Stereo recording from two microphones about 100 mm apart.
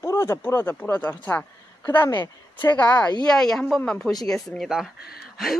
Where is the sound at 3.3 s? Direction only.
5° left (ahead or behind).